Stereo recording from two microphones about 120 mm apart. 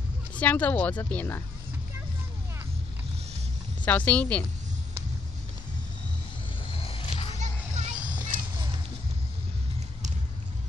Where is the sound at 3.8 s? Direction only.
10° left (ahead or behind).